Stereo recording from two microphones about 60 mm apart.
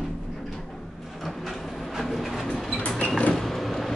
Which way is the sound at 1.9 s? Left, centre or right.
Centre.